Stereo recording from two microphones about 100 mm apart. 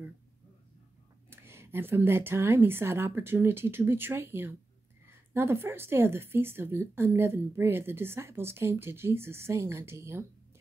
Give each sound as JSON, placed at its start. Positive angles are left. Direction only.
{"t": 1.3, "sound": "a woman's voice", "side_deg": -25}